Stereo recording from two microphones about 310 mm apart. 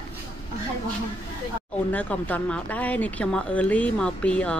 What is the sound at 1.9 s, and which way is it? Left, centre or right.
Speech, centre.